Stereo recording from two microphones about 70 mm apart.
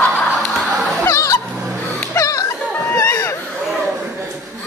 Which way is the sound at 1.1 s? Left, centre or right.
Left.